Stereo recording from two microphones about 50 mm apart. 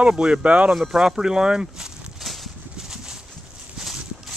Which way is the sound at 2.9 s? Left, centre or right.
Centre.